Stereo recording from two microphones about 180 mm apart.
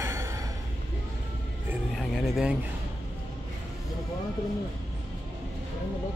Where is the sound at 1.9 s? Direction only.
Centre (ahead or behind).